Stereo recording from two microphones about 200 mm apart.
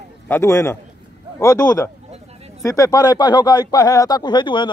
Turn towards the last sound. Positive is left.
turn(degrees=25)  # may be behind; listen again after turning